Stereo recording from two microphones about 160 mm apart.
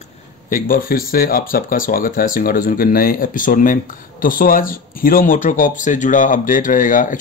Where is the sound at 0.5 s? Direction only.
60° left (ahead or behind).